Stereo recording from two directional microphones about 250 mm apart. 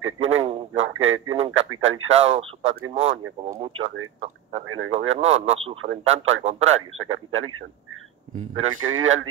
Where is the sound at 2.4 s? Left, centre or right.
Right.